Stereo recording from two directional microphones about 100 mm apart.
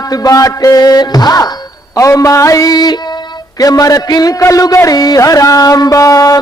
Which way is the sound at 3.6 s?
35° left (ahead or behind).